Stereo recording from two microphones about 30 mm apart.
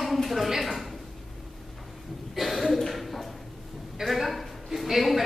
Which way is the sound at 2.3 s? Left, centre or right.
Centre.